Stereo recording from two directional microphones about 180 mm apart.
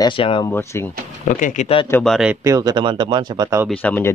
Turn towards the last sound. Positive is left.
turn(degrees=10)  # may be behind; listen again after turning